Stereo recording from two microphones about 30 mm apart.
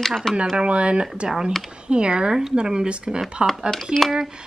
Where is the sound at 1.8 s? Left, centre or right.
Right.